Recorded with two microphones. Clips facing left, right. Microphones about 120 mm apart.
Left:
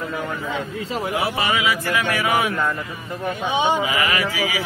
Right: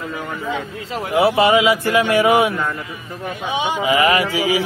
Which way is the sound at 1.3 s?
35° right (ahead or behind).